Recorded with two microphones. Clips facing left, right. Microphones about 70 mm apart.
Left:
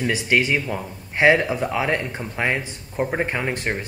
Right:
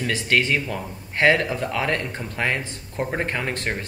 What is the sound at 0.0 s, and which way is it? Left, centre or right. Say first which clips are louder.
Speech: left 2 dB; centre.